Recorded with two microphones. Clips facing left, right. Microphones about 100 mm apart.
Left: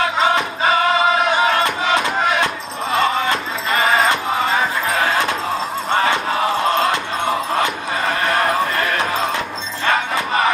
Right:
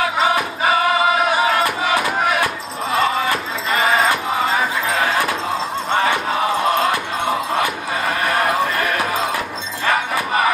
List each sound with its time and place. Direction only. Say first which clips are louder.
2.4 s music: even; 30° left (ahead or behind)